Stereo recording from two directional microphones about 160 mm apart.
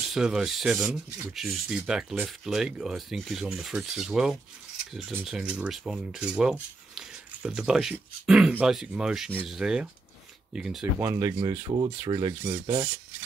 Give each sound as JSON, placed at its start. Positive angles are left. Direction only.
{"t": 0.0, "sound": "speech", "side_deg": -5}
{"t": 11.1, "sound": "rub", "side_deg": -20}
{"t": 11.7, "sound": "speech", "side_deg": -30}
{"t": 12.1, "sound": "rub", "side_deg": -30}